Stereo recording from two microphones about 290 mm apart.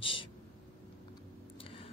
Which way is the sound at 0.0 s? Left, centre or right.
Centre.